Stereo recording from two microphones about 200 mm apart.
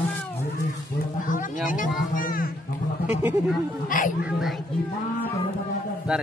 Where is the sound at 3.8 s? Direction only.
45° left (ahead or behind).